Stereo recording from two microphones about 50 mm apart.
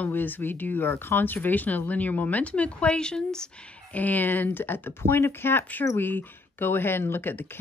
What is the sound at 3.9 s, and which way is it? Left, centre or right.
Speech, left.